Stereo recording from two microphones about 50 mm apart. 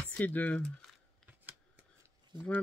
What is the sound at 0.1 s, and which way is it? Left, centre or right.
Speech, left.